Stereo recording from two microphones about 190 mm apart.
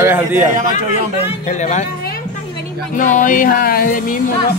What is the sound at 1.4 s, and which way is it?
Speech, 35° left (ahead or behind).